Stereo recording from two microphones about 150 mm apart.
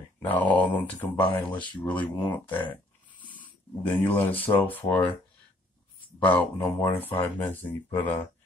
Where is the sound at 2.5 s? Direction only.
10° left (ahead or behind).